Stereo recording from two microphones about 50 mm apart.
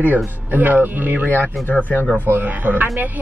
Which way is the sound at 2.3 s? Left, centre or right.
Right.